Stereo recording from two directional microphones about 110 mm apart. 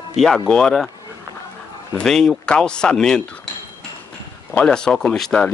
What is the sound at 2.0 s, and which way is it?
Speech, 5° left (ahead or behind).